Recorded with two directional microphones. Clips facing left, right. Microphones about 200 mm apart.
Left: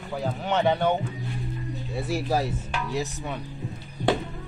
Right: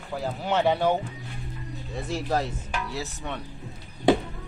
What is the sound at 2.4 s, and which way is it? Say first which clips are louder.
Music: left 1 dB; 15° left (ahead or behind).